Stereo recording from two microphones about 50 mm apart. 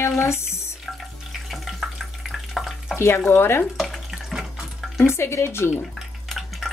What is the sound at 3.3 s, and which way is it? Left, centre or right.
Speech, left.